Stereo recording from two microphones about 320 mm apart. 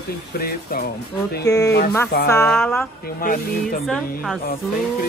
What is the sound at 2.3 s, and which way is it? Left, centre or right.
Speech, centre.